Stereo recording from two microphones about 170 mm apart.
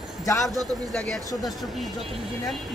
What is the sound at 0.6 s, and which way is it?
Speech, centre (ahead or behind).